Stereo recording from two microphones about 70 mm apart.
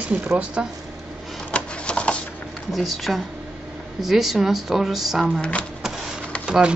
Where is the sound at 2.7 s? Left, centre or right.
Centre.